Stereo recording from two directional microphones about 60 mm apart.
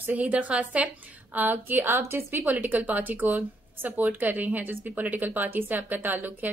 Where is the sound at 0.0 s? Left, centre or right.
Right.